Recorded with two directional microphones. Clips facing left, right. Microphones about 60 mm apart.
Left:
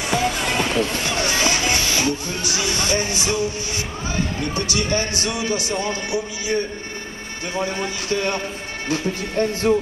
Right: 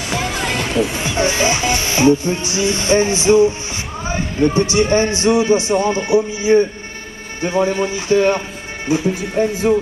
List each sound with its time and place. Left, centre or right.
0.2 s music: centre
0.7 s speech: centre